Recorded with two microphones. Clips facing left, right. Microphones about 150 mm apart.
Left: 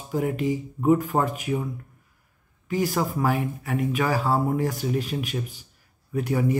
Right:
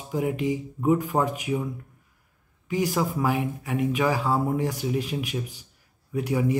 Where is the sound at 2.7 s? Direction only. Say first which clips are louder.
Even; 15° right (ahead or behind).